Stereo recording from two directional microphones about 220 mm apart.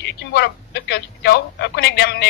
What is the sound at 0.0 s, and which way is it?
A woman's voice, 50° left (ahead or behind).